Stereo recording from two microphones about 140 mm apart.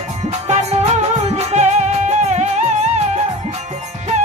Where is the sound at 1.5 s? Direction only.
55° right (ahead or behind).